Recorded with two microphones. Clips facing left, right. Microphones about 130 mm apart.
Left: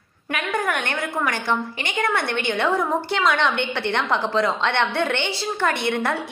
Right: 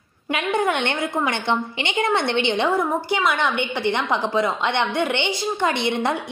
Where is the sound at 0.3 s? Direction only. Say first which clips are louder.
Right 3 dB; 25° right (ahead or behind).